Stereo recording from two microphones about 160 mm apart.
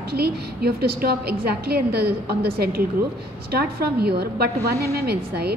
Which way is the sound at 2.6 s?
70° right (ahead or behind).